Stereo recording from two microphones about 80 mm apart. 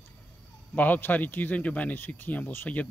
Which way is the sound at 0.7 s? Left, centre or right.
Left.